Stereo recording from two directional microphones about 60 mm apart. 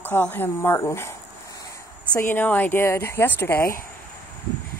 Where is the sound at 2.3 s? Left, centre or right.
Left.